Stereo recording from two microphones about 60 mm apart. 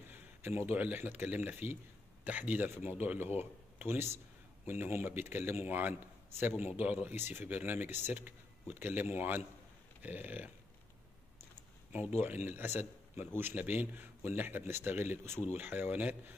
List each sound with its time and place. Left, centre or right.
0.1 s a sound: right
0.7 s a man's voice: right
11.9 s a man's voice: right